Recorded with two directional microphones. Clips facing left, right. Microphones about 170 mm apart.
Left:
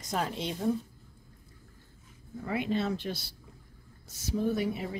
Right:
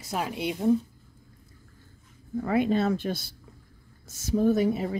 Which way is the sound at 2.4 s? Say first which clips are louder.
Right 6 dB; 50° right (ahead or behind).